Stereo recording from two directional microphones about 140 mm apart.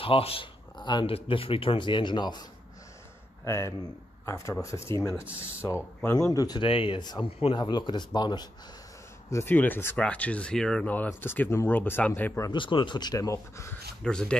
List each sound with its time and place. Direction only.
0.0 s speech: 40° left (ahead or behind)
3.4 s speech: 20° left (ahead or behind)
5.2 s speech: 10° right (ahead or behind)
6.1 s speech: 25° left (ahead or behind)
9.3 s speech: 15° left (ahead or behind)
12.4 s speech: 35° left (ahead or behind)
14.0 s speech: 5° left (ahead or behind)